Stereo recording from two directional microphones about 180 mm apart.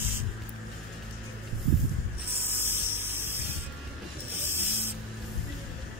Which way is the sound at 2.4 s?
10° right (ahead or behind).